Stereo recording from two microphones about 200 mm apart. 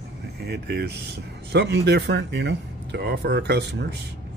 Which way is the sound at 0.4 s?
55° right (ahead or behind).